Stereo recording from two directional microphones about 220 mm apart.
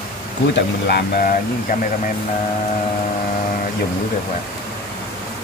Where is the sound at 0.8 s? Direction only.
45° left (ahead or behind).